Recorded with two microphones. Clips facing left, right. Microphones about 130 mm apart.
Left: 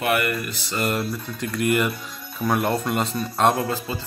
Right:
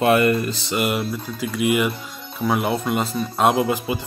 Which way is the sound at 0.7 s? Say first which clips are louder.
Right 1 dB; 10° right (ahead or behind).